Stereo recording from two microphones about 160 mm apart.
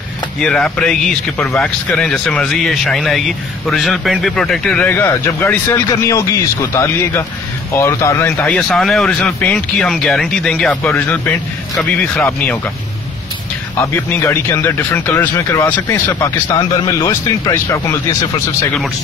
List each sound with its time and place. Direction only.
0.4 s a man's voice: 5° left (ahead or behind)
8.4 s a man's voice: 5° left (ahead or behind)
13.7 s speech: 15° left (ahead or behind)